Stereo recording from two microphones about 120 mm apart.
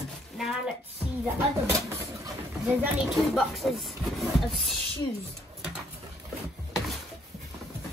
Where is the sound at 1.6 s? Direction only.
25° right (ahead or behind).